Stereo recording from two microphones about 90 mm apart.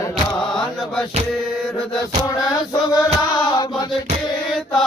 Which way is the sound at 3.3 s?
50° left (ahead or behind).